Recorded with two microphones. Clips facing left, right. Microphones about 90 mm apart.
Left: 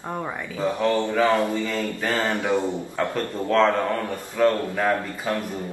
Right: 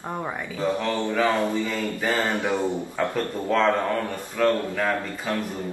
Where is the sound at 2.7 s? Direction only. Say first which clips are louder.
Even; 10° right (ahead or behind).